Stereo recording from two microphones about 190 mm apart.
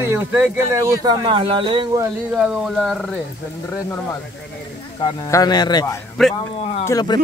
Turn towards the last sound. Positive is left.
turn(degrees=20)  # may be behind; listen again after turning